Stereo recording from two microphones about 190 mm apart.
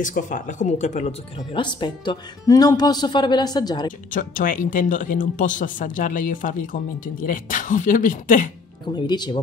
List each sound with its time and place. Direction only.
0.0 s speech: 45° left (ahead or behind); by 3.9 s 20° left (ahead or behind)
4.1 s speech: 45° left (ahead or behind)
8.9 s speech: 20° left (ahead or behind)